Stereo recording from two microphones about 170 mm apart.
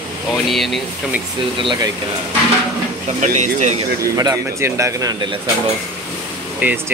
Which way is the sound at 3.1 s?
45° right (ahead or behind).